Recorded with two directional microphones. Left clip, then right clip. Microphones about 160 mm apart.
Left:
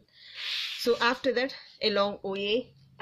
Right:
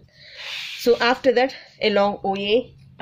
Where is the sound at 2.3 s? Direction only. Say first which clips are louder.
Right 9 dB; 30° left (ahead or behind).